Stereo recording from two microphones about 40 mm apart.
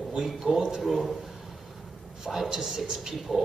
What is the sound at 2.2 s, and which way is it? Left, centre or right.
Speech, centre.